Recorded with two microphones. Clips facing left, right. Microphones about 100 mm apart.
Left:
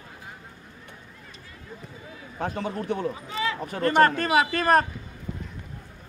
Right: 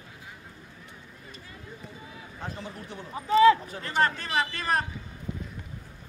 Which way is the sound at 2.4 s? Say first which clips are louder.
Left 10 dB; 70° left (ahead or behind).